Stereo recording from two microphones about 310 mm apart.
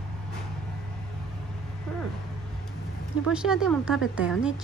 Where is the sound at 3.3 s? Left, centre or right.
Centre.